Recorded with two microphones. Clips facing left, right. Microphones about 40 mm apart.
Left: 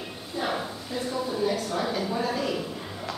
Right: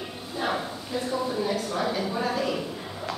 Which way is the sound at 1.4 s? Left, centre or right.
Centre.